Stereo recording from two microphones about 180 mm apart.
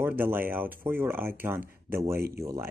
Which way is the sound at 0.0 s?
10° right (ahead or behind).